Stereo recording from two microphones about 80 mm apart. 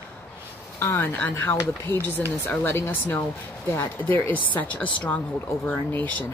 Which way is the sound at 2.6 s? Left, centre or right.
Left.